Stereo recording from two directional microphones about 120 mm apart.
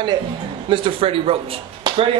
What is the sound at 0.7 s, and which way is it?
Speech, 50° right (ahead or behind).